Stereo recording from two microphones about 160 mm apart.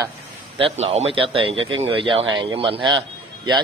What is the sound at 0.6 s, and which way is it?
Speech, 40° right (ahead or behind).